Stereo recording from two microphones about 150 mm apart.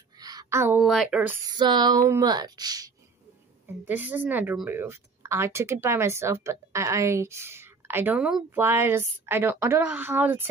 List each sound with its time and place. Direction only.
0.2 s a sound: 25° right (ahead or behind)
1.1 s speech: 10° right (ahead or behind)
1.5 s speech: 30° right (ahead or behind)
3.8 s speech: 10° right (ahead or behind)